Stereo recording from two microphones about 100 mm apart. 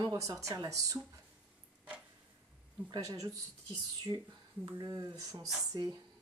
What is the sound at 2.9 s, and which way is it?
Speech, 35° right (ahead or behind).